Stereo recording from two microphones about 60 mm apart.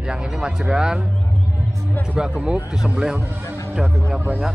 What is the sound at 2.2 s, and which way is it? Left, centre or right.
Speech, centre.